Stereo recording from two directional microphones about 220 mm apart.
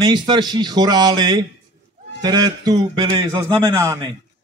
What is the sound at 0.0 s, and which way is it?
A man's voice, 20° right (ahead or behind).